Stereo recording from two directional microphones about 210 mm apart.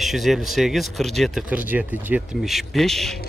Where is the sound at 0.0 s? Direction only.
Centre (ahead or behind).